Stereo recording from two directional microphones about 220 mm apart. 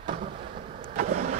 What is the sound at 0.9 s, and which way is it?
Vehicle, 35° right (ahead or behind).